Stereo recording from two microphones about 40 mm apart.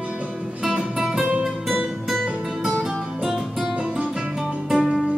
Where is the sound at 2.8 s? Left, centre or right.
Centre.